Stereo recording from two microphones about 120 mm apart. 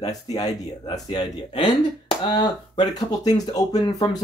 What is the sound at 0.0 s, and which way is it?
Speech, 35° left (ahead or behind).